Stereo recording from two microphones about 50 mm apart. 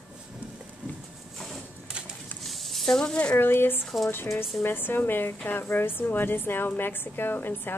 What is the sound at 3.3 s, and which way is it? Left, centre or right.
A woman's voice, left.